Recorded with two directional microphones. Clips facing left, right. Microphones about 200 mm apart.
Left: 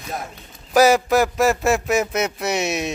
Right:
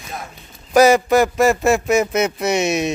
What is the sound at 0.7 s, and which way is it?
A man's voice, 5° left (ahead or behind).